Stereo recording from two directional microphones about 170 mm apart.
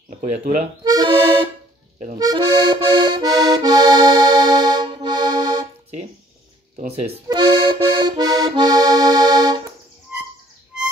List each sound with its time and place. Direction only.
0.8 s accordion: 25° right (ahead or behind)
7.2 s accordion: 30° right (ahead or behind)
10.1 s insect: 10° right (ahead or behind)